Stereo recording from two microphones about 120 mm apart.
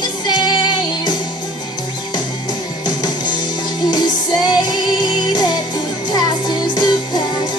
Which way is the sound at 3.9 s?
35° left (ahead or behind).